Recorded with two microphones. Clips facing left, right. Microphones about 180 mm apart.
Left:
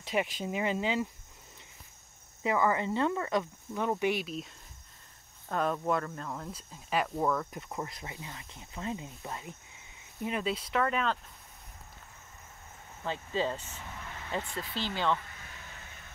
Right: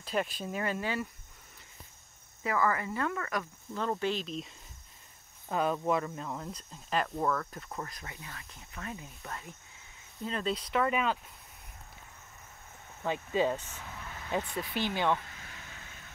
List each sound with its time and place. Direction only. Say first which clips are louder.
0.1 s speech: left 1 dB; 15° left (ahead or behind)
2.4 s speech: left 2 dB; 20° left (ahead or behind)
3.7 s speech: left 2 dB; 15° left (ahead or behind); by 6.5 s 5° right (ahead or behind)
6.5 s speech: left 2 dB; 10° left (ahead or behind)
10.2 s speech: left 1 dB; 10° left (ahead or behind)
13.0 s speech: right 3 dB; 15° right (ahead or behind)